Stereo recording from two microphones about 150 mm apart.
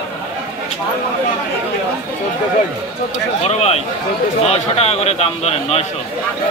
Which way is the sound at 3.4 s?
45° left (ahead or behind).